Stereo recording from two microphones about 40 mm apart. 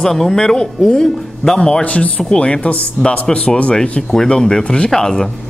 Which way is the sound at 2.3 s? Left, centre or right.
Left.